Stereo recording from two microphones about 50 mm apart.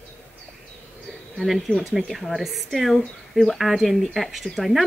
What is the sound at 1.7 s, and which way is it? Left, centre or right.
Speech, left.